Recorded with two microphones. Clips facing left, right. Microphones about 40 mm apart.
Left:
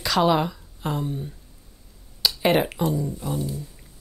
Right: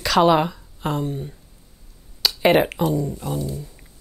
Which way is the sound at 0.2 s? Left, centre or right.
Centre.